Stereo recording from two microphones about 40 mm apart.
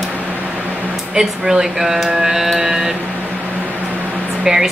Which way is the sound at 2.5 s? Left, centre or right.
Centre.